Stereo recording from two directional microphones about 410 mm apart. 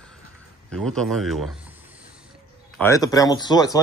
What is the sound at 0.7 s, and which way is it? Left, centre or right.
Speech, centre.